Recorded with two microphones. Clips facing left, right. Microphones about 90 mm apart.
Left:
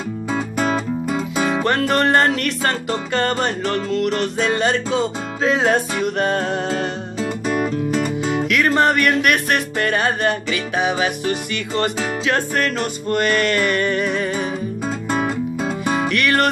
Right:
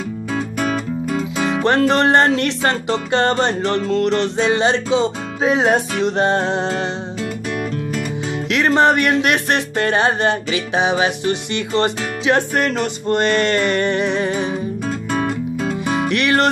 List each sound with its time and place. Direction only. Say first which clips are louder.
0.3 s music: left 1 dB; 15° left (ahead or behind)
1.6 s music: right 5 dB; 25° right (ahead or behind)
7.2 s music: left 7 dB; 25° left (ahead or behind)
8.5 s music: right 3 dB; 25° right (ahead or behind)
14.9 s music: even; 10° left (ahead or behind)
16.1 s music: right 2 dB; 20° right (ahead or behind)